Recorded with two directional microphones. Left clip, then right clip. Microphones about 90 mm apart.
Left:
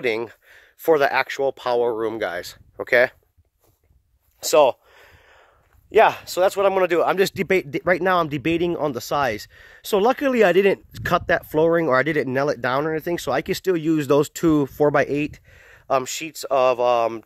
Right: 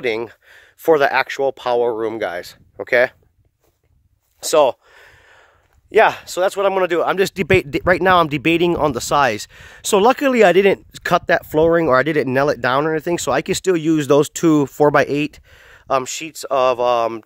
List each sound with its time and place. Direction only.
0.0 s speech: 35° right (ahead or behind)
0.5 s speech: 65° right (ahead or behind); by 2.5 s 40° right (ahead or behind)
2.5 s speech: 30° right (ahead or behind)
4.4 s speech: 40° right (ahead or behind)
7.4 s speech: 60° right (ahead or behind)
7.9 s speech: 45° right (ahead or behind)